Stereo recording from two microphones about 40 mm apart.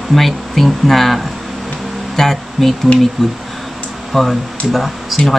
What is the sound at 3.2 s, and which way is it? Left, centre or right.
Speech, centre.